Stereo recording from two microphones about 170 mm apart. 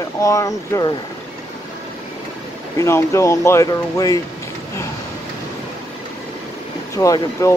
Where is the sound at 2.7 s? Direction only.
15° left (ahead or behind).